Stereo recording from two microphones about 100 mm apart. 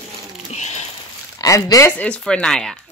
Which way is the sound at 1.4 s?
35° left (ahead or behind).